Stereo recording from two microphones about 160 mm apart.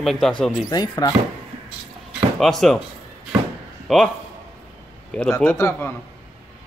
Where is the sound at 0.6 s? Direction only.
25° left (ahead or behind).